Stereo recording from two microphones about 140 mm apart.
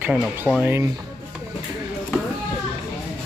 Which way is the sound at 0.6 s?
20° right (ahead or behind).